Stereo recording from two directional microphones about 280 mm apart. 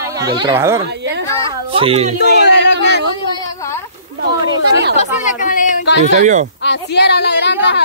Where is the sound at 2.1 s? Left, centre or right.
Left.